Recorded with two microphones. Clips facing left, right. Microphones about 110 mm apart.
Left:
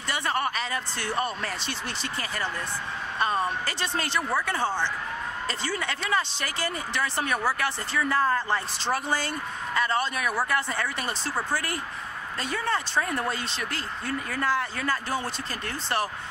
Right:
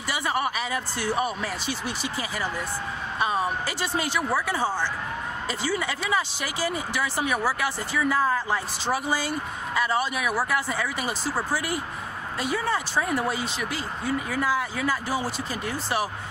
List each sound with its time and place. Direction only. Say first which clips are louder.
0.1 s speech: right 1 dB; 10° right (ahead or behind)